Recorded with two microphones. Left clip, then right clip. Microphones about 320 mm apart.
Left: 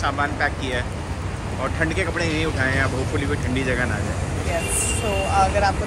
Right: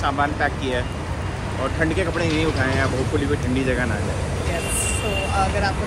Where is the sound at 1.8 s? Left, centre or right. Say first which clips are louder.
Right 1 dB; centre.